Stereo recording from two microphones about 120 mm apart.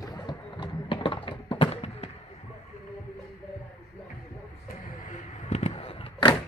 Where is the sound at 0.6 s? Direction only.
45° left (ahead or behind).